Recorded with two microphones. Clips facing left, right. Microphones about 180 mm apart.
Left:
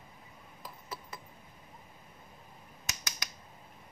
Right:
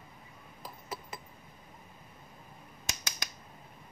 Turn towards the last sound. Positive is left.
turn(degrees=-30)  # may be behind; listen again after turning